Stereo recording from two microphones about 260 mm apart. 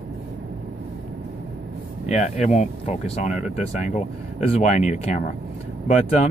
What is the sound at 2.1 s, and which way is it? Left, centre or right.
Speech, left.